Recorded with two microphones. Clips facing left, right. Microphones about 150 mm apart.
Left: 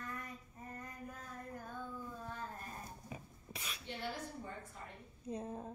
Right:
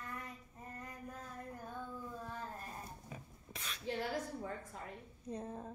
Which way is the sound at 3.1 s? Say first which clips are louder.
Left 1 dB; 10° left (ahead or behind).